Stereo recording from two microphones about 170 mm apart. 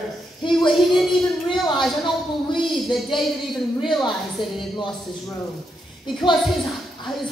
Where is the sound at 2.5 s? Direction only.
30° left (ahead or behind).